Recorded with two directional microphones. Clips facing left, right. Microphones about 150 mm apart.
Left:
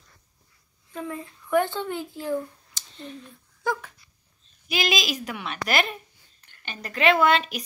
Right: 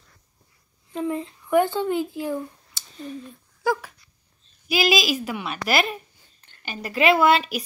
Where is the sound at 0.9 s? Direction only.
25° right (ahead or behind).